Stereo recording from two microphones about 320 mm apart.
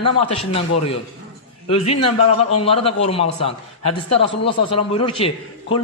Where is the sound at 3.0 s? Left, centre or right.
Centre.